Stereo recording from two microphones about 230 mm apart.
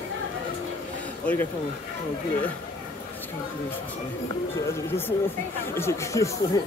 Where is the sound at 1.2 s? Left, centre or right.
Centre.